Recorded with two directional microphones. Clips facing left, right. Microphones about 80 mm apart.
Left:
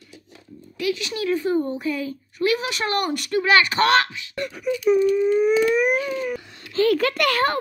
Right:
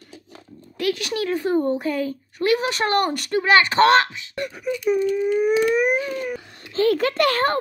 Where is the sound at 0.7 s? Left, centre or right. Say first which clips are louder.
Right 2 dB; right.